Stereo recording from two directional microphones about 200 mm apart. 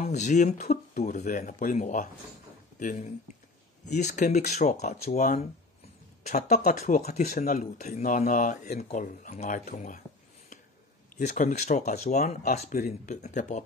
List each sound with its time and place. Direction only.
0.0 s speech: 35° left (ahead or behind)
11.1 s speech: 45° left (ahead or behind)